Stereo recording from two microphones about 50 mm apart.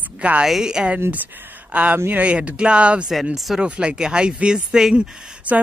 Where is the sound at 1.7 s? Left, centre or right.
Right.